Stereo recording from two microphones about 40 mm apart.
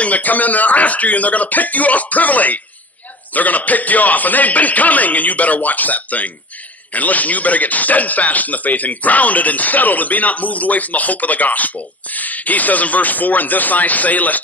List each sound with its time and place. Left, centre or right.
0.0 s speech: left